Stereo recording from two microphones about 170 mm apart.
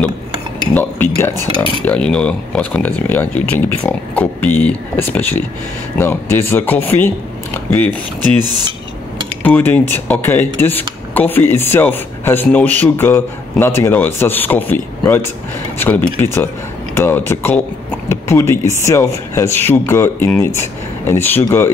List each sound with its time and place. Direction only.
0.7 s speech: 10° left (ahead or behind)